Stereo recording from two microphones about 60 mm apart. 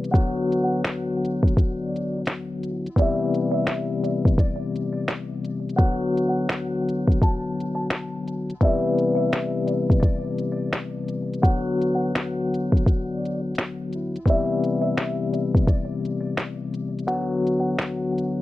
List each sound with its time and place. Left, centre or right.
0.1 s music: centre
3.0 s music: centre
5.8 s music: centre
8.7 s music: centre
11.4 s music: centre
14.2 s music: centre
17.3 s music: centre